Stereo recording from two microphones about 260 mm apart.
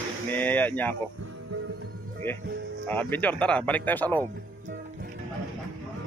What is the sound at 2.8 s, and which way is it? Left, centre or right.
Speech, centre.